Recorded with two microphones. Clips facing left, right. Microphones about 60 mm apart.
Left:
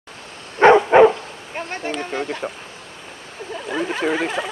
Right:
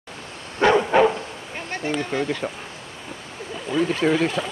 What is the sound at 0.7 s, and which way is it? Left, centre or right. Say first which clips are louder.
Bow-wow: left 5 dB; left.